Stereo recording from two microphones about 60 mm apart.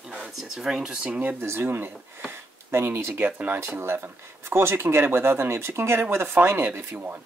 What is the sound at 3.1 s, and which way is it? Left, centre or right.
Speech, right.